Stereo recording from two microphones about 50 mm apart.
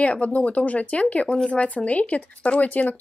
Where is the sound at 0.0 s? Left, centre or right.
Left.